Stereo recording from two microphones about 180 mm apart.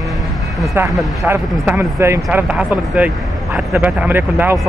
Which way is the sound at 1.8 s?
15° right (ahead or behind).